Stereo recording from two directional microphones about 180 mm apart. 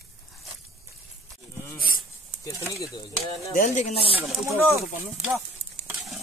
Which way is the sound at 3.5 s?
45° left (ahead or behind).